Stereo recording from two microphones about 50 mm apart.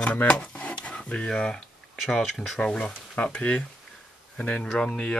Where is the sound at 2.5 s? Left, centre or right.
Centre.